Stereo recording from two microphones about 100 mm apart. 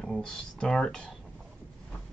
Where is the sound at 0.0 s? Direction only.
5° left (ahead or behind).